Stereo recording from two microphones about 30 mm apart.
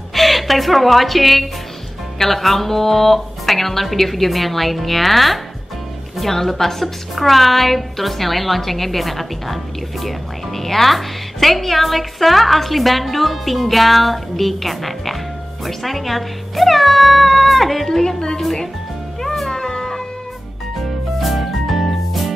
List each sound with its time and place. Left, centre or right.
0.1 s a woman's voice: centre
19.2 s music: centre
19.5 s music: left
21.2 s music: centre